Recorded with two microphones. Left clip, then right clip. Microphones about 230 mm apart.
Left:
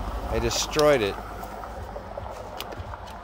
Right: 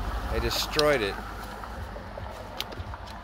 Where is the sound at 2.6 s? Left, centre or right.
Left.